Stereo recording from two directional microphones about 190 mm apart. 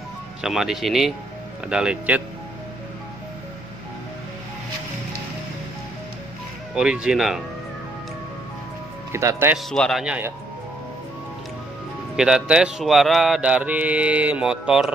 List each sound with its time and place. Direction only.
0.4 s speech: 5° right (ahead or behind)
6.7 s speech: 5° right (ahead or behind)
9.1 s speech: 15° right (ahead or behind)
9.7 s speech: centre (ahead or behind)
12.2 s speech: 5° right (ahead or behind)